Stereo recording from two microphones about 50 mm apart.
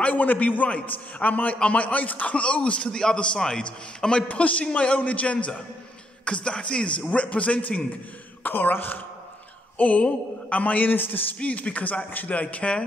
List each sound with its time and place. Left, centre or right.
0.0 s a man's voice: left; by 4.2 s centre
4.3 s a man's voice: left
8.5 s a man's voice: left
9.8 s a man's voice: left
11.3 s a man's voice: left